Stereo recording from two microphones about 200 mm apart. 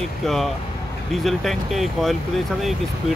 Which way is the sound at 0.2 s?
Centre (ahead or behind).